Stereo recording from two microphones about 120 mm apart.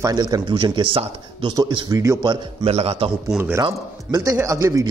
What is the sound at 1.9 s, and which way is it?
Speech, 25° right (ahead or behind).